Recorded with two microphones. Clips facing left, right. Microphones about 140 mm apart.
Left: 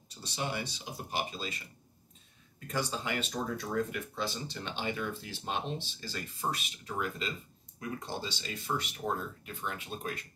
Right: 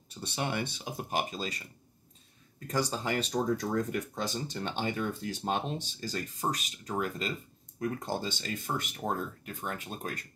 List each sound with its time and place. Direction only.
0.2 s speech: 55° right (ahead or behind)
2.7 s speech: 40° right (ahead or behind)